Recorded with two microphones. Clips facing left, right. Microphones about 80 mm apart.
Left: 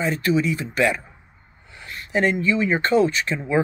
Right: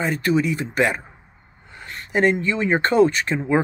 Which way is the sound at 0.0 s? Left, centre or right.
Right.